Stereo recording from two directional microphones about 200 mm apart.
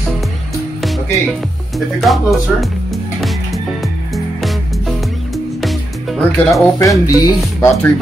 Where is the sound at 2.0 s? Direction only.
Centre (ahead or behind).